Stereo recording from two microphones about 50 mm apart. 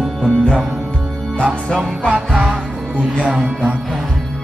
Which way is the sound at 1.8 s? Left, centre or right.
Right.